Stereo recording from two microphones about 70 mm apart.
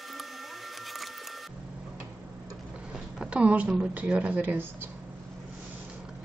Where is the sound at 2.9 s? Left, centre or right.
Centre.